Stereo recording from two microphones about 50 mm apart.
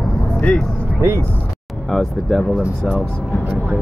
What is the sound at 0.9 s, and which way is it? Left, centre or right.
Speech, right.